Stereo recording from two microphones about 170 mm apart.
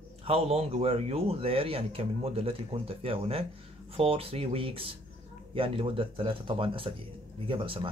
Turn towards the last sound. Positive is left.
turn(degrees=-30)  # may be behind; listen again after turning